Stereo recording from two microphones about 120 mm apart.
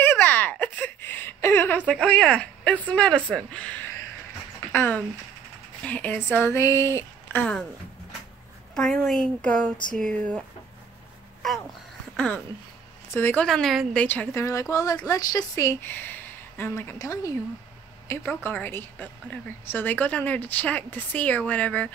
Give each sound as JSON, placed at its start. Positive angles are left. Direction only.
{"t": 0.0, "sound": "a sound", "side_deg": 15}
{"t": 2.9, "sound": "a woman's voice", "side_deg": 10}
{"t": 3.3, "sound": "a sound", "side_deg": 10}
{"t": 4.7, "sound": "a woman's voice", "side_deg": 15}
{"t": 8.7, "sound": "a woman's voice", "side_deg": 5}
{"t": 13.1, "sound": "a woman's voice", "side_deg": 15}
{"t": 13.5, "sound": "a woman's voice", "side_deg": 0}
{"t": 14.0, "sound": "a woman's voice", "side_deg": 15}
{"t": 14.4, "sound": "a woman's voice", "side_deg": 25}
{"t": 18.0, "sound": "a woman's voice", "side_deg": 15}